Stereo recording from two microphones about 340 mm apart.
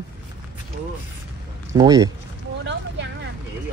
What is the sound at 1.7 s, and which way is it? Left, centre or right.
Speech, centre.